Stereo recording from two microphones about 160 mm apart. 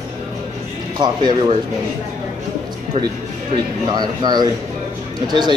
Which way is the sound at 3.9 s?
25° right (ahead or behind).